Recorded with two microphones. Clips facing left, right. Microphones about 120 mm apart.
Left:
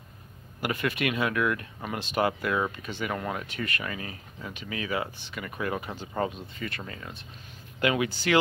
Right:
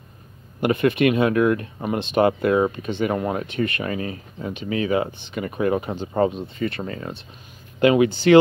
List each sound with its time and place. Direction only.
0.6 s speech: 25° right (ahead or behind)
7.8 s speech: 25° right (ahead or behind)